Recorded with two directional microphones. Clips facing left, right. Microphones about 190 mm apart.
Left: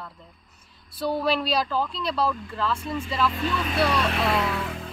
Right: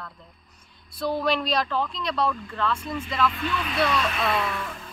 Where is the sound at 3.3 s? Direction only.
35° left (ahead or behind).